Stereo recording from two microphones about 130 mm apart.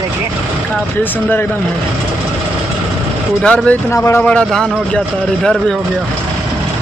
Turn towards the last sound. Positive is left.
turn(degrees=5)  # may be behind; listen again after turning